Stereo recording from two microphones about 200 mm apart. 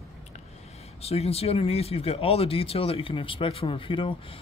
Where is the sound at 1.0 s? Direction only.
30° left (ahead or behind).